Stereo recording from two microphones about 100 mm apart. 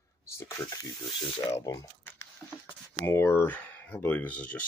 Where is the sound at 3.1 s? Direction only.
25° left (ahead or behind).